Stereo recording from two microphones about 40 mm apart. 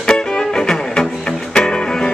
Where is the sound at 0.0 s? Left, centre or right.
Centre.